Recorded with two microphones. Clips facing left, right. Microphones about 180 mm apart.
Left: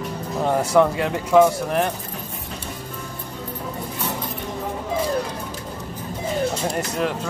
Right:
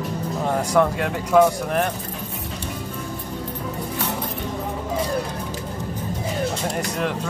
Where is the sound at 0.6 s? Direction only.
5° left (ahead or behind).